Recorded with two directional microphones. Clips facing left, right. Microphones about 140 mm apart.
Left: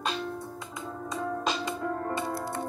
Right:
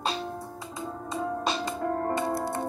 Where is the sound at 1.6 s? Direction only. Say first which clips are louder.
Right 3 dB; 45° right (ahead or behind).